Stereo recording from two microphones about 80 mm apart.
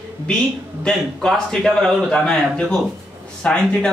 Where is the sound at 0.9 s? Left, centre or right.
Centre.